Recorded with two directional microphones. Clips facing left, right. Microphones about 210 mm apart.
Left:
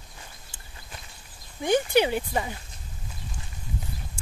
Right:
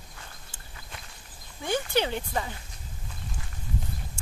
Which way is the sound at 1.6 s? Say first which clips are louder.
Left 5 dB; 15° left (ahead or behind).